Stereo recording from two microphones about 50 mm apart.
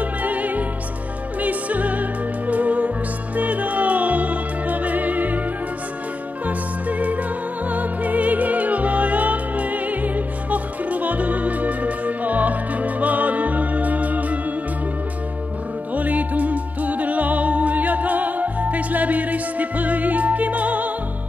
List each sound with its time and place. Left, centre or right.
0.0 s music: right
6.4 s music: right
15.9 s music: right